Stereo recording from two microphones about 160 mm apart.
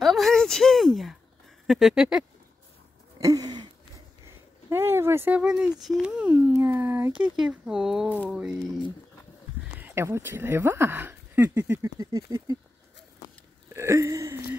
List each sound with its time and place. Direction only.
0.0 s a woman's voice: centre (ahead or behind)
3.2 s a sound: 20° right (ahead or behind)
4.6 s speech: 15° right (ahead or behind)
9.8 s speech: 15° right (ahead or behind)
13.7 s speech: 20° right (ahead or behind)